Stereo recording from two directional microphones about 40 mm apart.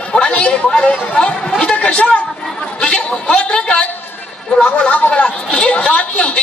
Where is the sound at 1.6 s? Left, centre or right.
Left.